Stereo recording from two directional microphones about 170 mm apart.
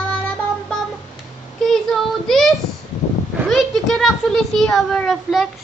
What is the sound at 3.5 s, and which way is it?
A child's voice, centre (ahead or behind).